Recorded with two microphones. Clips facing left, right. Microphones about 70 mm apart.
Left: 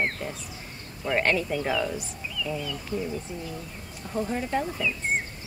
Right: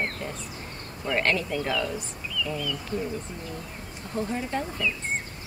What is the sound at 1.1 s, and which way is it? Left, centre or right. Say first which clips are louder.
Speech: left 1 dB; centre.